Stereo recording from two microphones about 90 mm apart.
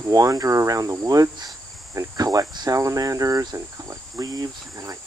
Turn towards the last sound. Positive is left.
turn(degrees=-40)  # may be behind; listen again after turning